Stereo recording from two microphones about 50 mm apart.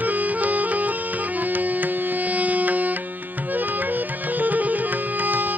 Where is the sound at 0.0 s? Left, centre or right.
Right.